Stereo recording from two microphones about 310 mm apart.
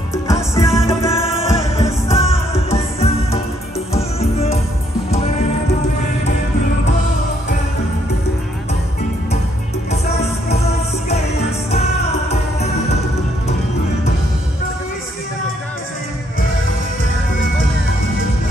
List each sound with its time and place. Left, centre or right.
0.1 s music: centre